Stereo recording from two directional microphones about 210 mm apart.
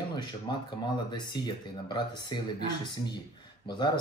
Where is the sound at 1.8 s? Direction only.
20° left (ahead or behind).